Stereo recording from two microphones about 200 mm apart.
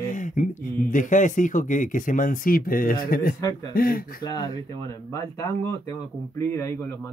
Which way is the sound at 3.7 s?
45° left (ahead or behind).